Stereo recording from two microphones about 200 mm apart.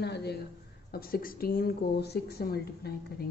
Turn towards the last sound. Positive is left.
turn(degrees=50)  # may be behind; listen again after turning